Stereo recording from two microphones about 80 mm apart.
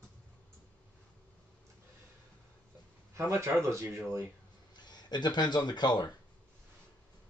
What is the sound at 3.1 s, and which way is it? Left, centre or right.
Speech, right.